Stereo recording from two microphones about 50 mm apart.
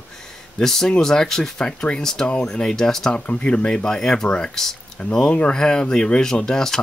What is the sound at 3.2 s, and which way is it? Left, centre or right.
Speech, left.